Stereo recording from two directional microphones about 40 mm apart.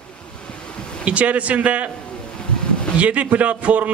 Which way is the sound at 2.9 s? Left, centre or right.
Right.